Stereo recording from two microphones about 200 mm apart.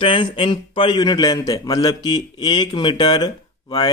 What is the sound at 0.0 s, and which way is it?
A man's voice, 25° left (ahead or behind).